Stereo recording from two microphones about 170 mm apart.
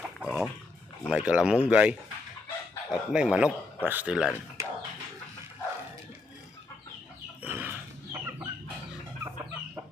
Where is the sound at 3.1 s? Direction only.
5° right (ahead or behind).